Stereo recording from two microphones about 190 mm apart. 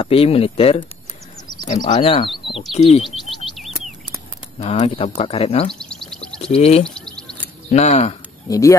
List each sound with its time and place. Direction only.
0.0 s speech: 30° left (ahead or behind)
3.5 s chirp: centre (ahead or behind)
4.6 s speech: 35° left (ahead or behind)
5.8 s a sound: 5° left (ahead or behind)
6.4 s speech: 30° left (ahead or behind)
8.5 s speech: 15° left (ahead or behind)